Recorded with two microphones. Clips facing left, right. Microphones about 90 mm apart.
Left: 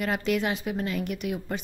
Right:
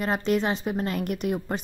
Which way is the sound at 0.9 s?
45° right (ahead or behind).